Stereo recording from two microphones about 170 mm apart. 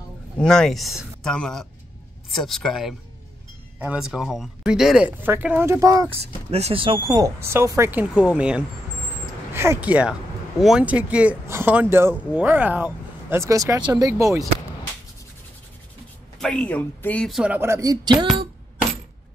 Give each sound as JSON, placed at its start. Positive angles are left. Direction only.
{"t": 0.4, "sound": "speech", "side_deg": 5}
{"t": 6.5, "sound": "speech", "side_deg": -35}
{"t": 16.3, "sound": "speech", "side_deg": 5}